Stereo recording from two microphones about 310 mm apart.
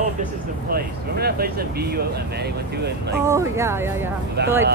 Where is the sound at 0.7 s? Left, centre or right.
Right.